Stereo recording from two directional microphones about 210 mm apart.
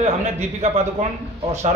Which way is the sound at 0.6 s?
30° right (ahead or behind).